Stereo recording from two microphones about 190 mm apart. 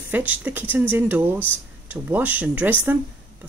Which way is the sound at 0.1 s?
10° right (ahead or behind).